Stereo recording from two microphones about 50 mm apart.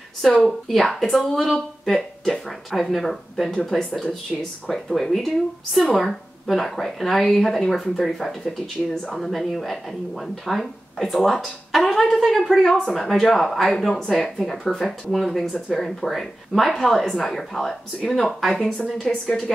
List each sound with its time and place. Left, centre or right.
0.2 s speech: centre
19.2 s speech: centre